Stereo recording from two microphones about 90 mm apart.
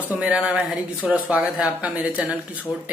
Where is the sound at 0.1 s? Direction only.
15° right (ahead or behind).